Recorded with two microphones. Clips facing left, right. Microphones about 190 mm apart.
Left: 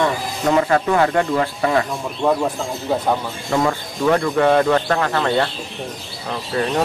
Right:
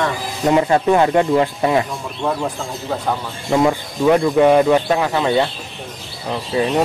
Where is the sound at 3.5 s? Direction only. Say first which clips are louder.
Right 4 dB; 15° right (ahead or behind).